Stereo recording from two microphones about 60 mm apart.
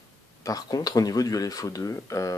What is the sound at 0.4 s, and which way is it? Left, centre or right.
Speech, left.